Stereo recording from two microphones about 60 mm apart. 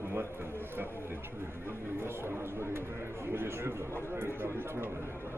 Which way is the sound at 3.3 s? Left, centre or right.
Right.